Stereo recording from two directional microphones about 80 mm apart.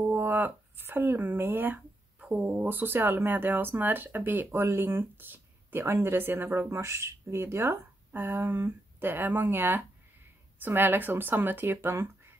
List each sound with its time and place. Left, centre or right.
0.1 s speech: right
2.1 s speech: centre
2.6 s speech: right